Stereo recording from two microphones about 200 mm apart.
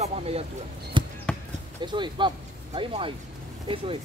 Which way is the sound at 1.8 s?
25° right (ahead or behind).